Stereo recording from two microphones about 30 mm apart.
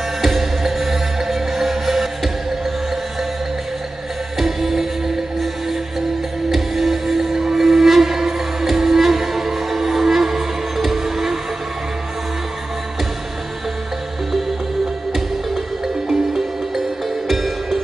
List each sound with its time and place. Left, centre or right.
0.2 s music: centre
4.4 s music: centre
16.1 s music: centre